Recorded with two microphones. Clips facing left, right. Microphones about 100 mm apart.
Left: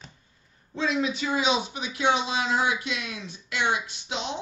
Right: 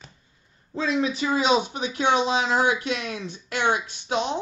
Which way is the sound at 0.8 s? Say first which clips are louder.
Right 2 dB; 35° right (ahead or behind).